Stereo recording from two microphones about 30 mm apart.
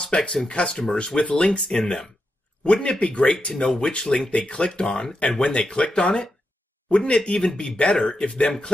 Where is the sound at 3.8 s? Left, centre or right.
Left.